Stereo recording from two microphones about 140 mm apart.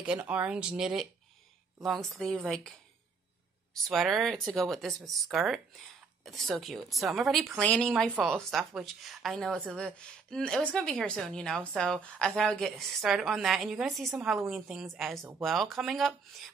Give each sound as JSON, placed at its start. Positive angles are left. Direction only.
{"t": 0.0, "sound": "a woman's voice", "side_deg": -10}
{"t": 3.8, "sound": "a woman's voice", "side_deg": 0}